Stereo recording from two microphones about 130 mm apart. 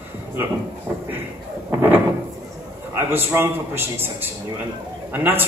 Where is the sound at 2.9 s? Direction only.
20° right (ahead or behind).